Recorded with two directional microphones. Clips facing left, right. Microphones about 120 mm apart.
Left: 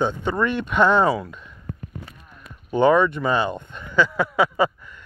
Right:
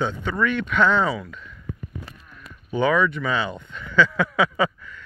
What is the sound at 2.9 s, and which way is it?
Speech, 25° left (ahead or behind).